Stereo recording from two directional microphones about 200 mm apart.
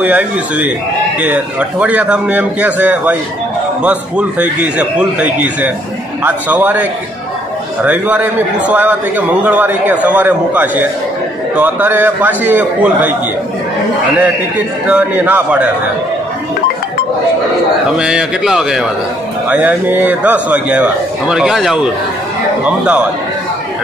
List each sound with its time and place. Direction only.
0.0 s a man's voice: 5° right (ahead or behind)
14.9 s a man's voice: 10° right (ahead or behind)
17.9 s a man's voice: 5° right (ahead or behind)